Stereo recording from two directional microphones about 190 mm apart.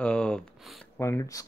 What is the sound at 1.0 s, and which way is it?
Speech, 15° left (ahead or behind).